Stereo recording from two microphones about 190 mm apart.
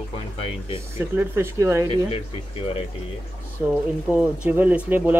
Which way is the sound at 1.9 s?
30° left (ahead or behind).